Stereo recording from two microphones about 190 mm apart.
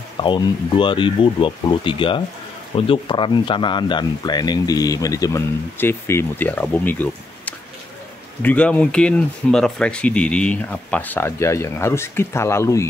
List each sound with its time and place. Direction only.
0.2 s speech: 25° left (ahead or behind)